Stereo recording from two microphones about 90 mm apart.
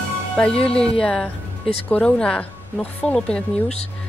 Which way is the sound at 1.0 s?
10° left (ahead or behind).